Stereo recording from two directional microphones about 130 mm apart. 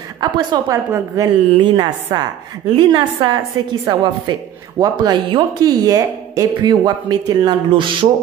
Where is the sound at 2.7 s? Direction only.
40° right (ahead or behind).